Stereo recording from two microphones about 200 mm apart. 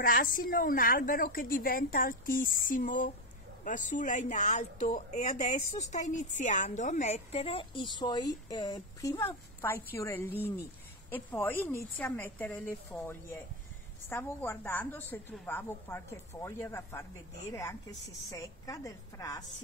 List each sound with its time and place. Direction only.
0.0 s a woman's voice: 45° left (ahead or behind); by 19.4 s 15° left (ahead or behind)